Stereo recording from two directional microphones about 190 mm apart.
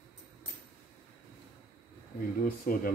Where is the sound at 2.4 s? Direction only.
50° left (ahead or behind).